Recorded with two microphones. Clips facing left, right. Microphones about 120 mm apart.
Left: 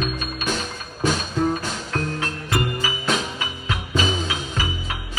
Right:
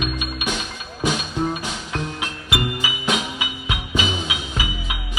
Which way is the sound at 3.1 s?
15° right (ahead or behind).